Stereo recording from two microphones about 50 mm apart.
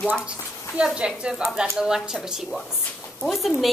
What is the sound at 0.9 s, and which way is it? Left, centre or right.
A woman's voice, centre.